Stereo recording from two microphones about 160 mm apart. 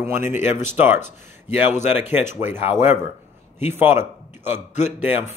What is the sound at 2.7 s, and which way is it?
A man's voice, 15° right (ahead or behind).